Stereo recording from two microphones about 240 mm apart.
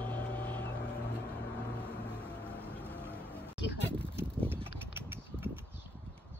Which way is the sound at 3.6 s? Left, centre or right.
Left.